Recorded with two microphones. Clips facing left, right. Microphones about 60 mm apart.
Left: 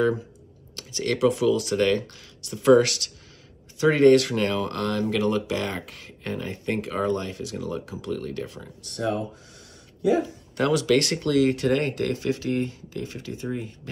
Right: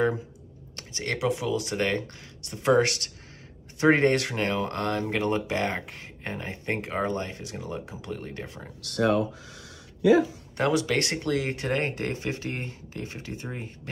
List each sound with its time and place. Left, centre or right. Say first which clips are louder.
0.7 s speech: left 5 dB; right
8.8 s speech: right 4 dB; right
10.6 s speech: left 4 dB; right